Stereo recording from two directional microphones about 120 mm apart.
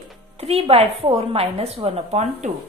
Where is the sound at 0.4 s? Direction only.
60° right (ahead or behind).